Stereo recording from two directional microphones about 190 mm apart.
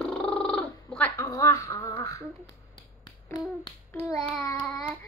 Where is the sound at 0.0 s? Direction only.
5° left (ahead or behind).